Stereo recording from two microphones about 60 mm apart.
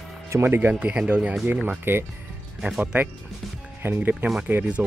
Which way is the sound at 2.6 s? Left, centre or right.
Centre.